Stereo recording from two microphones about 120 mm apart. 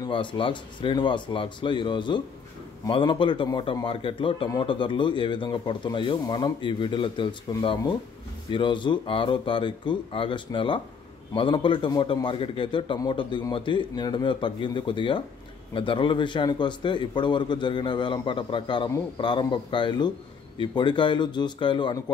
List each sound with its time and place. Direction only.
0.1 s a man's voice: 45° left (ahead or behind)